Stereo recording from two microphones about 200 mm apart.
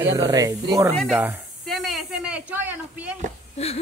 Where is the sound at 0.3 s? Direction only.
15° right (ahead or behind).